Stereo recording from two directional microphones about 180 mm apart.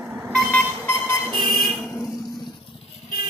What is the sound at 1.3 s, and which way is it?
Music, 50° left (ahead or behind).